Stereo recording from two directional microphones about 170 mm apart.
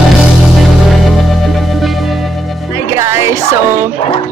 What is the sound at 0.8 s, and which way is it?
Music, centre (ahead or behind).